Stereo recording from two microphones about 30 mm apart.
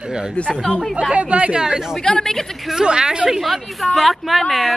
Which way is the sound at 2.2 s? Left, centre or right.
Centre.